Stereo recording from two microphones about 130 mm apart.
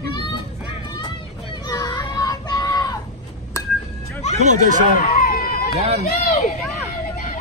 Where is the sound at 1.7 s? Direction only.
30° left (ahead or behind).